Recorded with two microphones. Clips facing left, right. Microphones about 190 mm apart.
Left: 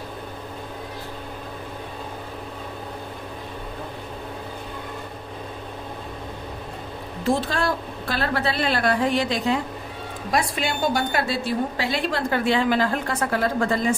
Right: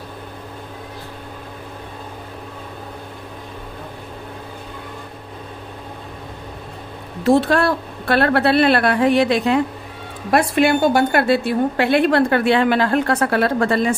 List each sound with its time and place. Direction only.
7.2 s a woman's voice: 65° right (ahead or behind)